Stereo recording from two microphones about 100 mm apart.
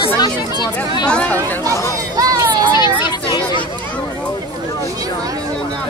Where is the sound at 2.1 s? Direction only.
40° right (ahead or behind).